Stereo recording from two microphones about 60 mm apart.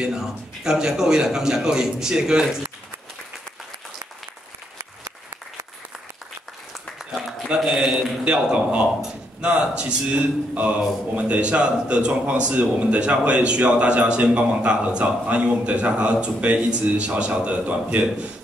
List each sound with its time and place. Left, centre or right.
0.0 s a man's voice: centre
7.1 s a sound: centre
7.4 s a man's voice: centre